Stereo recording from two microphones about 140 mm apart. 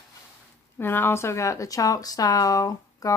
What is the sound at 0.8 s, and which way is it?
Speech, 15° left (ahead or behind).